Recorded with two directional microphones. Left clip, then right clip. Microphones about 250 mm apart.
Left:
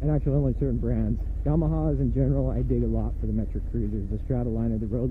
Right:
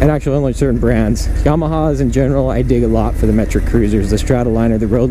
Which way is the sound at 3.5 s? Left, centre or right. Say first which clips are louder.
Right 19 dB; centre.